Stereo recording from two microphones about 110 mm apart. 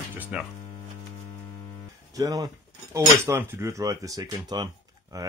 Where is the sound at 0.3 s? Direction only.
10° right (ahead or behind).